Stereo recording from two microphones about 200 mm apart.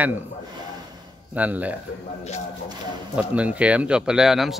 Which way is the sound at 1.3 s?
10° right (ahead or behind).